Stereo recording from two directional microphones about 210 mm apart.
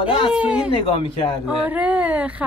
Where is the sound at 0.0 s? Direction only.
25° left (ahead or behind).